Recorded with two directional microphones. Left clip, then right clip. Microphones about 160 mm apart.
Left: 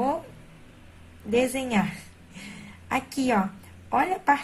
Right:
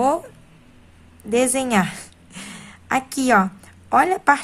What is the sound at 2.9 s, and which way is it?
Speech, 35° right (ahead or behind).